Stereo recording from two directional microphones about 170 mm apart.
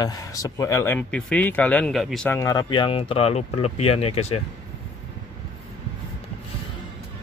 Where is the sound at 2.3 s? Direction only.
20° left (ahead or behind); by 4.4 s 35° left (ahead or behind).